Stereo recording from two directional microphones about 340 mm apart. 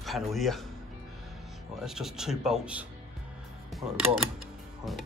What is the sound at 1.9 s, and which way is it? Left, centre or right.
Speech, centre.